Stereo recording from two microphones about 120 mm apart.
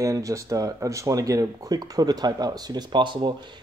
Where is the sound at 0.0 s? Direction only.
25° right (ahead or behind).